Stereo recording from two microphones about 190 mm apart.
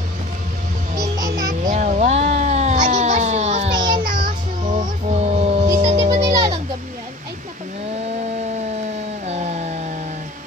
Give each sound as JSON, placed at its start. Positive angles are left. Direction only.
{"t": 0.9, "sound": "music", "side_deg": -20}
{"t": 1.7, "sound": "a sound", "side_deg": -40}
{"t": 4.0, "sound": "music", "side_deg": -45}
{"t": 6.2, "sound": "children playing", "side_deg": -15}
{"t": 9.2, "sound": "chainsaw", "side_deg": -35}